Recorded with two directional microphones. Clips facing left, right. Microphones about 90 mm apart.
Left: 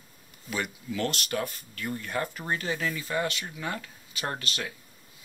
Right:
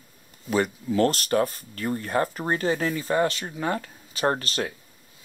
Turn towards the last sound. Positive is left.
turn(degrees=-40)  # may be behind; listen again after turning